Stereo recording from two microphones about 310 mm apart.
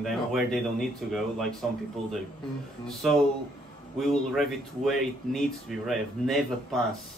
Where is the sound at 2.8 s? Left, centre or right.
Centre.